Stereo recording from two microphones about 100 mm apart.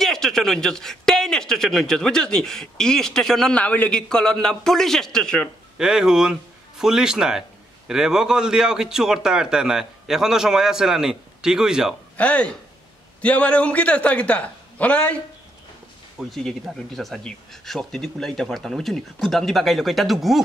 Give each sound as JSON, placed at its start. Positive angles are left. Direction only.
{"t": 0.0, "sound": "a man's voice", "side_deg": 5}
{"t": 5.8, "sound": "a man's voice", "side_deg": -5}
{"t": 12.2, "sound": "a man's voice", "side_deg": 15}
{"t": 16.2, "sound": "a man's voice", "side_deg": 5}